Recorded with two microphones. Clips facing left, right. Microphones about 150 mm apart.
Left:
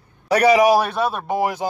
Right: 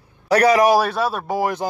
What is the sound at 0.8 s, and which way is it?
Speech, 20° left (ahead or behind).